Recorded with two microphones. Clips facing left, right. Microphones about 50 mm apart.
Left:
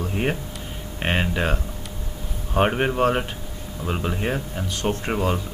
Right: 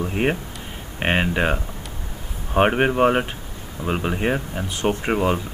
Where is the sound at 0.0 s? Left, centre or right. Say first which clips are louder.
Right 3 dB; centre.